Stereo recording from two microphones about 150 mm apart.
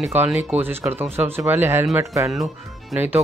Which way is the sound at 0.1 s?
10° right (ahead or behind).